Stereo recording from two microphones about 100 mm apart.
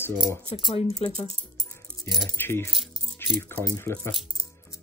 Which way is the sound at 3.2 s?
25° left (ahead or behind).